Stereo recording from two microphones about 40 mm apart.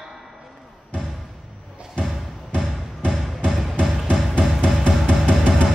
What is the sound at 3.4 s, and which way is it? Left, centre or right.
Music, left.